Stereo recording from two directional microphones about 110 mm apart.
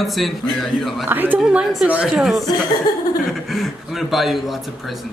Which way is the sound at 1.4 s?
5° right (ahead or behind).